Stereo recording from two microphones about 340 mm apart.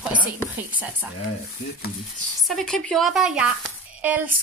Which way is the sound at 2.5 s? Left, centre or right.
Centre.